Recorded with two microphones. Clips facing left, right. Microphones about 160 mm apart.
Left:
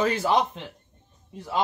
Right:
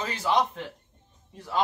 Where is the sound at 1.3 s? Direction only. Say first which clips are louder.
Left 2 dB; 20° left (ahead or behind).